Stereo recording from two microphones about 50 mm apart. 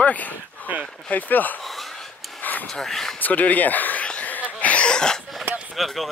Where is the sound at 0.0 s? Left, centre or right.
Left.